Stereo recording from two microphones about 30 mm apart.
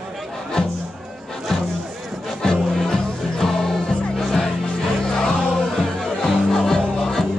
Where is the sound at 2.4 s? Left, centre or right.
Left.